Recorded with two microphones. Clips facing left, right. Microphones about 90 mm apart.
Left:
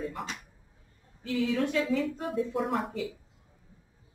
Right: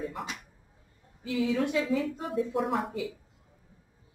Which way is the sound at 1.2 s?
15° right (ahead or behind).